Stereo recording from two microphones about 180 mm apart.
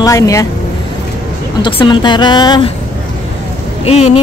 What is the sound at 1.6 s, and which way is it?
Speech, 30° left (ahead or behind).